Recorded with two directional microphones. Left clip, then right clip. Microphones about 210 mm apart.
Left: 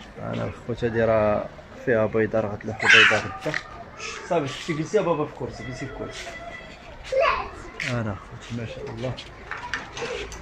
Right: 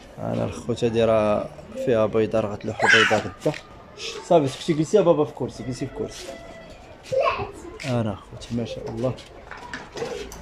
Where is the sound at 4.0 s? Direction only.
15° right (ahead or behind).